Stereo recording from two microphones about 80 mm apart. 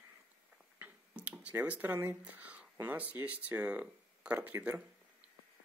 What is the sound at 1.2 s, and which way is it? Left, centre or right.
Speech, centre.